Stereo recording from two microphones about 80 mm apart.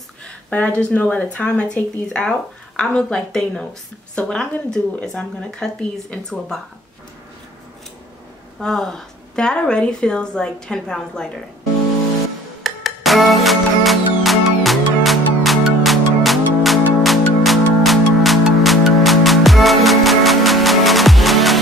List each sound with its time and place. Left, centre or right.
0.5 s speech: centre
8.5 s speech: centre
12.6 s music: centre